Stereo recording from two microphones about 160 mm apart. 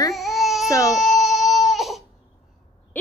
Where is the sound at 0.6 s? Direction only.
20° left (ahead or behind).